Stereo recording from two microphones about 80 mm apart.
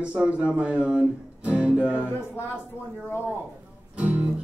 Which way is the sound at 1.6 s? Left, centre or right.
Centre.